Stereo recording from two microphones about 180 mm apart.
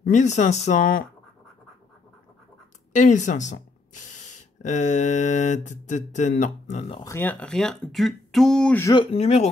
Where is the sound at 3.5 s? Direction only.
45° left (ahead or behind).